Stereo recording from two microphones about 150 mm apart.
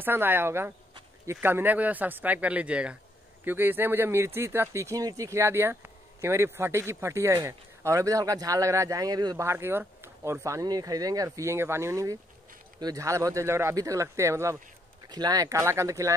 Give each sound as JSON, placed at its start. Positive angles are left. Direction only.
{"t": 0.0, "sound": "speech", "side_deg": -15}